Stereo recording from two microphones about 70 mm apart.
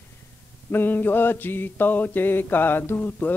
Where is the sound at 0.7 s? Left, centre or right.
Left.